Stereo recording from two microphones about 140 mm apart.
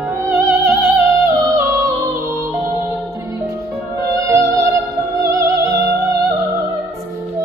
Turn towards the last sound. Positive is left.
turn(degrees=-20)  # may be behind; listen again after turning